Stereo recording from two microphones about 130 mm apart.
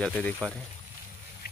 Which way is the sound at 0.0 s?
10° left (ahead or behind).